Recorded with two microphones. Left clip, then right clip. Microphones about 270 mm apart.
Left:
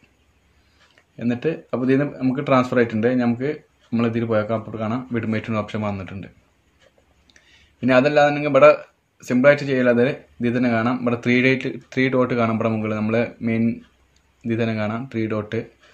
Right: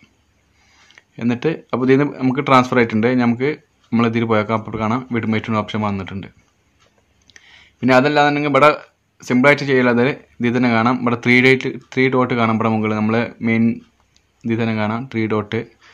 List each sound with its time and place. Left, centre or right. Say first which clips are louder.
0.9 s speech: right 4 dB; right